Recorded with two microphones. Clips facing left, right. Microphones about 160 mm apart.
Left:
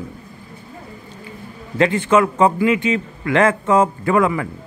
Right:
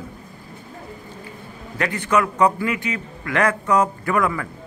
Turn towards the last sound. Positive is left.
turn(degrees=20)  # may be behind; listen again after turning